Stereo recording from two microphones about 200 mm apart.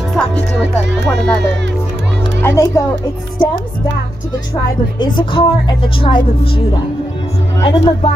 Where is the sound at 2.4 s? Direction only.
15° left (ahead or behind).